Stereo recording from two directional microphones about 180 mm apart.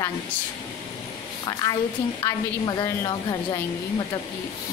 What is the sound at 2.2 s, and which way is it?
A woman's voice, 20° left (ahead or behind).